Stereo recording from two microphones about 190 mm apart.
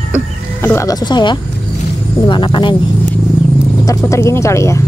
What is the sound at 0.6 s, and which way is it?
Speech, 15° left (ahead or behind).